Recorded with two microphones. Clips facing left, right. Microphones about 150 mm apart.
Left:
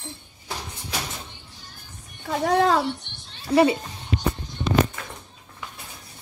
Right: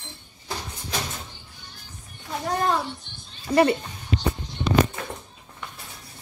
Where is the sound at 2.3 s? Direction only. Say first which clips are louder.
Left 5 dB; 85° left.